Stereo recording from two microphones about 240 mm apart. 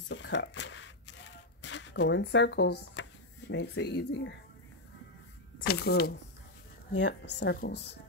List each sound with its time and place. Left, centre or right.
0.1 s shuffling cards: left
2.8 s speech: left
5.7 s speech: left